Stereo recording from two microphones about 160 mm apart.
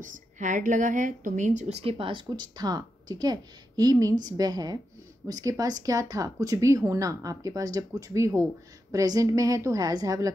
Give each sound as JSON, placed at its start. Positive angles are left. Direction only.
{"t": 0.0, "sound": "a woman's voice", "side_deg": -55}